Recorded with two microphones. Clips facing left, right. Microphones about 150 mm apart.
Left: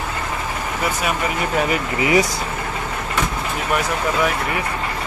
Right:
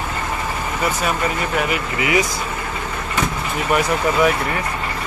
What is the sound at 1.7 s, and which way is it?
Speech, 35° left (ahead or behind).